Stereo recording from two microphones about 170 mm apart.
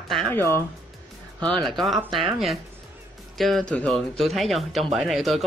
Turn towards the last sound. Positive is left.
turn(degrees=0)  # may be behind; listen again after turning